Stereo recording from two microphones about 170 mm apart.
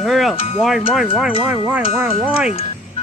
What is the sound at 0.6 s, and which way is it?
Speech, centre (ahead or behind).